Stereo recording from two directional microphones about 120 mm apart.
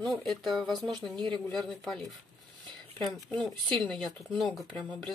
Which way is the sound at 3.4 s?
5° left (ahead or behind).